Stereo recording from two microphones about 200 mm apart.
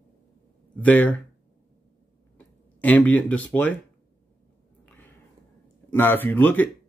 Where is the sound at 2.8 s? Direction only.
5° left (ahead or behind).